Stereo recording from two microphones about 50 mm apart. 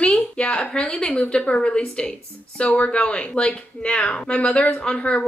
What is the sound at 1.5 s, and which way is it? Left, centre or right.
Speech, left.